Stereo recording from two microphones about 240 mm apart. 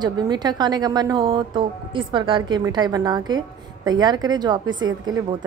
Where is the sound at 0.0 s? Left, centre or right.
Centre.